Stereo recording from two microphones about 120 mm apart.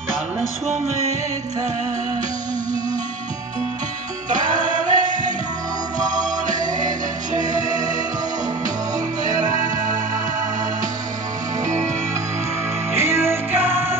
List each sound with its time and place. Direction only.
4.8 s music: 90° right
6.5 s music: 35° right (ahead or behind)
9.3 s music: 30° right (ahead or behind)
11.6 s music: 25° right (ahead or behind)
12.9 s music: 20° right (ahead or behind)